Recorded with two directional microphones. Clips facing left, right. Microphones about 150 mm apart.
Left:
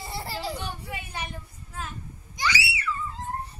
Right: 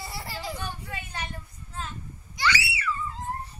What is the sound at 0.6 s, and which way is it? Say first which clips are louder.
Children playing: left 1 dB; 10° left (ahead or behind).